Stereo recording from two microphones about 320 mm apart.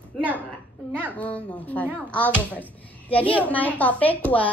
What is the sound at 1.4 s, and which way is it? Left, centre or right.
A child's voice, centre.